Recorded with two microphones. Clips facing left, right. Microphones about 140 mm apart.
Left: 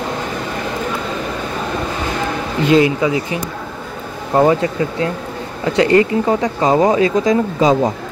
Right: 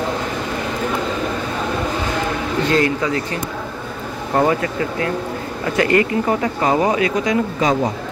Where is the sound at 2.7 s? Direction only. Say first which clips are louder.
Left 6 dB; 15° left (ahead or behind).